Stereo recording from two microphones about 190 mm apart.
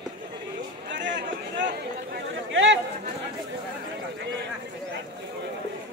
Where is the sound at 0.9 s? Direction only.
70° right (ahead or behind).